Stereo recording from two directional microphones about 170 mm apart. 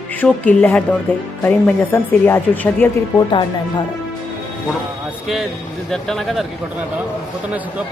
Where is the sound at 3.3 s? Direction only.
25° left (ahead or behind).